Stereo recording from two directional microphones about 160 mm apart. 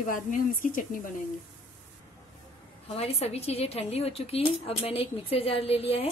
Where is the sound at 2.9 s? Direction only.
40° left (ahead or behind).